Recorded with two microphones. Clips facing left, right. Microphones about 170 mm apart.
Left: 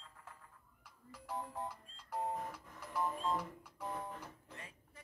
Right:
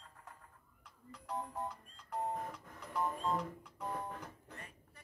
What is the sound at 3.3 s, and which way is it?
Music, centre (ahead or behind).